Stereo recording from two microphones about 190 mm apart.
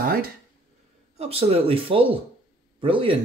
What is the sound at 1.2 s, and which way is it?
Speech, 30° right (ahead or behind).